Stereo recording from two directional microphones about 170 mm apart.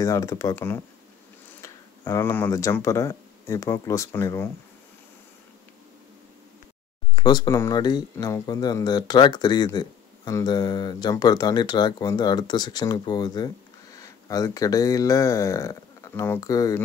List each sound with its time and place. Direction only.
0.0 s speech: 20° left (ahead or behind)
7.2 s speech: 25° left (ahead or behind)